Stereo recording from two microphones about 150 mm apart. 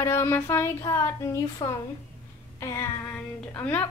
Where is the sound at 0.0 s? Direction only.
20° left (ahead or behind).